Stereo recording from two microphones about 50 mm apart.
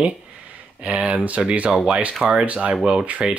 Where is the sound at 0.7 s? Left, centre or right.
Right.